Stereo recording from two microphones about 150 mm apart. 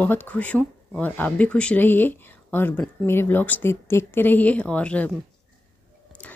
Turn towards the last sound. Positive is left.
turn(degrees=10)  # may be behind; listen again after turning